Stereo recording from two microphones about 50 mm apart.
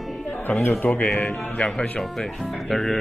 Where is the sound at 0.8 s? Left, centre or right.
Left.